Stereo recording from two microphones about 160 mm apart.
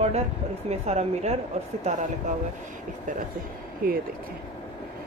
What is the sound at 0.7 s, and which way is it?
Speech, 40° right (ahead or behind).